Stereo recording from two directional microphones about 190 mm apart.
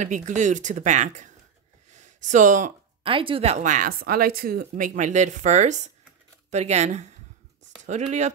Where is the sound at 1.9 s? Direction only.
40° right (ahead or behind).